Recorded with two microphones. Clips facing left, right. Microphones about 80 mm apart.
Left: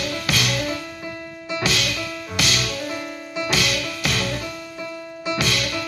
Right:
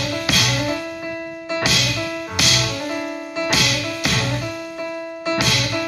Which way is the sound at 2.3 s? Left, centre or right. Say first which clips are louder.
Even; centre.